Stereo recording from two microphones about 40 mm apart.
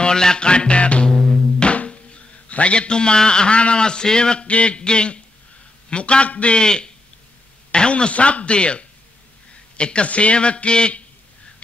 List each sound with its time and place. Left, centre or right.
0.0 s a man's voice: centre
1.0 s music: centre
1.7 s music: left
2.4 s a man's voice: left